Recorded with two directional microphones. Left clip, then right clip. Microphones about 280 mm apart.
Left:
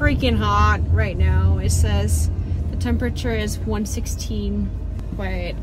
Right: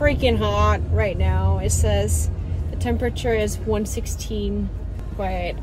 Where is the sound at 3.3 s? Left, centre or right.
Centre.